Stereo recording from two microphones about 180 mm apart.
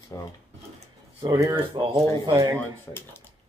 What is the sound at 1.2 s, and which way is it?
Speech, 20° right (ahead or behind).